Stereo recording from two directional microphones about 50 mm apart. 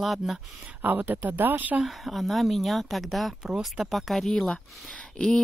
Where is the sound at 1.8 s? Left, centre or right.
Centre.